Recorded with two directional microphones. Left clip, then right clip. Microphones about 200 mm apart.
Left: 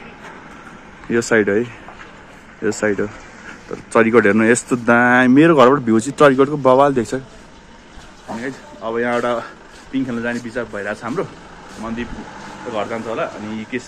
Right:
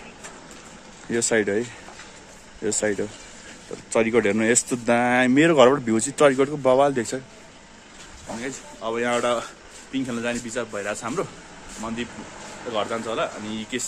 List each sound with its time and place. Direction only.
1.1 s speech: 5° right (ahead or behind)
2.6 s speech: 5° right (ahead or behind)
8.4 s speech: 10° right (ahead or behind)